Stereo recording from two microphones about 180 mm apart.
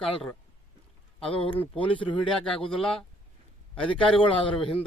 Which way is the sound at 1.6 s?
10° left (ahead or behind).